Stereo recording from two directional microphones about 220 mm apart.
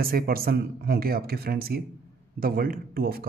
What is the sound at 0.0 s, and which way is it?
Speech, 40° right (ahead or behind).